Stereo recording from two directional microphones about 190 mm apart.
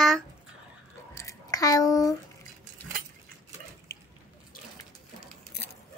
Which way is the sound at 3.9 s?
15° left (ahead or behind).